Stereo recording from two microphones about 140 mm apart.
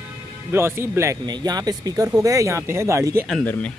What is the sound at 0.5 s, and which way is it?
Speech, 15° right (ahead or behind).